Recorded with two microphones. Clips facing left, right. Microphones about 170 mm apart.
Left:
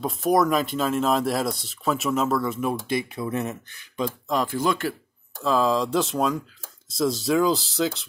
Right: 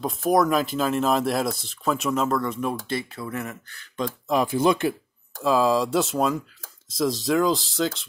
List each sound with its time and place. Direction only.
0.0 s speech: centre (ahead or behind)
2.8 s speech: 15° left (ahead or behind)
4.6 s speech: 20° right (ahead or behind)
5.4 s speech: 5° right (ahead or behind)